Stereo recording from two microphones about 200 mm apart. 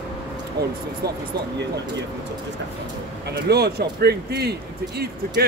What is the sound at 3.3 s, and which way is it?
Speech, 55° right (ahead or behind).